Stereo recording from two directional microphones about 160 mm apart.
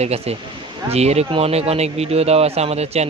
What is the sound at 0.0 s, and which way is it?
Speech, 40° right (ahead or behind).